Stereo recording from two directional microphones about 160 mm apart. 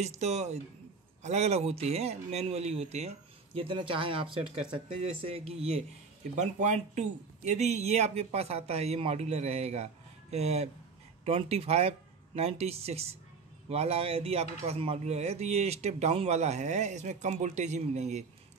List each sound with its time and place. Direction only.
0.0 s speech: 45° right (ahead or behind)